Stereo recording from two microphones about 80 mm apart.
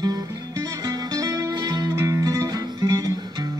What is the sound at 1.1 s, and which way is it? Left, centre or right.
Music, right.